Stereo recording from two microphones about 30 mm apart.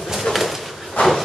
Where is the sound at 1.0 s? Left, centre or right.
Left.